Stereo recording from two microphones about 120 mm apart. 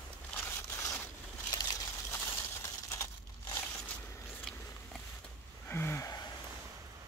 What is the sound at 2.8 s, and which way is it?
Crumpling, 25° left (ahead or behind).